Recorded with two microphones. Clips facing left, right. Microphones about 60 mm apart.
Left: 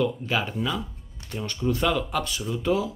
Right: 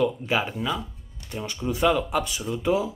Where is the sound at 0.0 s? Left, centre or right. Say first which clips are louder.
Right 2 dB; centre.